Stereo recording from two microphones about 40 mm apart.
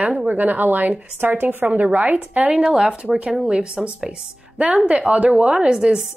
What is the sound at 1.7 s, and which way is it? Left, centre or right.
Speech, right.